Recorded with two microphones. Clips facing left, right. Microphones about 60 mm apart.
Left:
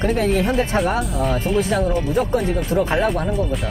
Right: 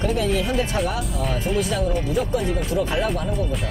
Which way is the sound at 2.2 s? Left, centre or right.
Left.